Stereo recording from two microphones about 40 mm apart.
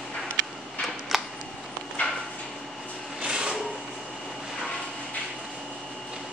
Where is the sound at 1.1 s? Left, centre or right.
Centre.